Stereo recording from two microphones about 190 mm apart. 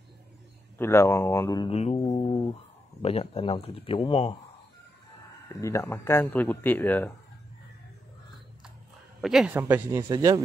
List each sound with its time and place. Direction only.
0.7 s speech: 10° left (ahead or behind)
1.7 s speech: 35° left (ahead or behind)
3.0 s speech: 30° left (ahead or behind)
5.5 s speech: 15° left (ahead or behind)
9.2 s speech: centre (ahead or behind); by 10.4 s 25° right (ahead or behind)